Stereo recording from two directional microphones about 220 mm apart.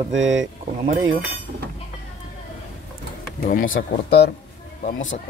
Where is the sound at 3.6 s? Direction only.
55° left (ahead or behind).